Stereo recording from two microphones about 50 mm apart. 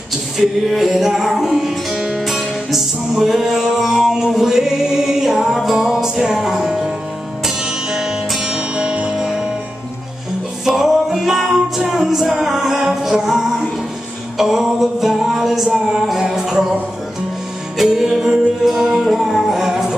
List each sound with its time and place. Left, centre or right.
0.7 s music: centre
9.1 s music: centre
10.6 s music: centre
17.7 s music: centre